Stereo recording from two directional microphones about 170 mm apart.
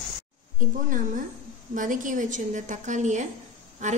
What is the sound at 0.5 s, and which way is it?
A woman's voice, 50° right (ahead or behind).